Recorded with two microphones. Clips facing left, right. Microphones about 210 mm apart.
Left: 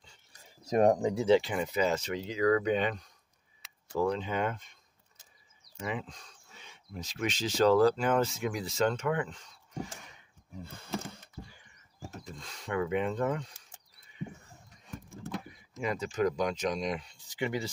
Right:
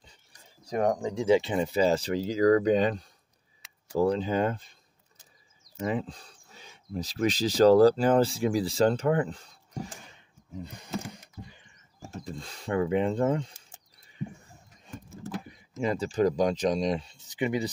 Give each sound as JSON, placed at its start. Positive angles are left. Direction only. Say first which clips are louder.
{"t": 0.7, "sound": "speech", "louder": "left 2 dB", "side_deg": 20}
{"t": 1.4, "sound": "speech", "louder": "right 5 dB", "side_deg": -25}
{"t": 10.5, "sound": "a sound", "louder": "right 3 dB", "side_deg": -15}
{"t": 12.1, "sound": "mechanisms", "louder": "right 9 dB", "side_deg": -30}
{"t": 15.0, "sound": "a sound", "louder": "right 2 dB", "side_deg": -5}
{"t": 15.8, "sound": "speech", "louder": "right 5 dB", "side_deg": -30}